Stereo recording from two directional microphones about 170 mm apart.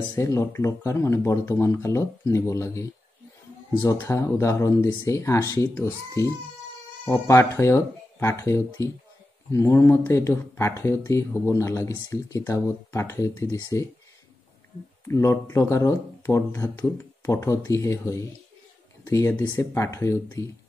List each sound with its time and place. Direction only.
0.1 s speech: 15° left (ahead or behind)
15.0 s speech: 15° left (ahead or behind)